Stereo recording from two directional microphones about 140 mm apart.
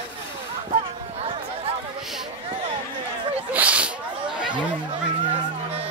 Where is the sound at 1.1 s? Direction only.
45° right (ahead or behind).